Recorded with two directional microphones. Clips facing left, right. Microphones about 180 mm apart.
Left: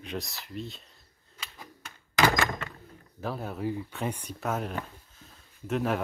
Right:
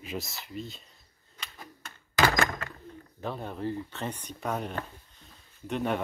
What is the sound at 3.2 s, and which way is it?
Speech, 5° left (ahead or behind).